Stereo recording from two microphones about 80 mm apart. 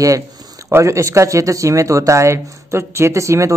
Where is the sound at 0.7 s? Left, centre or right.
Right.